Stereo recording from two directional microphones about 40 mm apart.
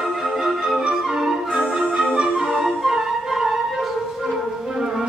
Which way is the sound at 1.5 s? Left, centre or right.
Right.